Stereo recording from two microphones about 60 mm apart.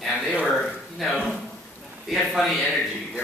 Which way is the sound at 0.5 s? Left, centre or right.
Centre.